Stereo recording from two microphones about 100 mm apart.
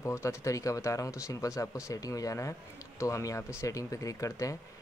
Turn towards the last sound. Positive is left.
turn(degrees=35)  # may be behind; listen again after turning